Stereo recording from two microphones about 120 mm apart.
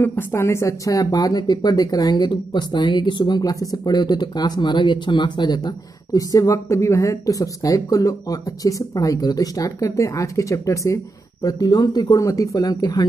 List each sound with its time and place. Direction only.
0.0 s speech: 20° left (ahead or behind)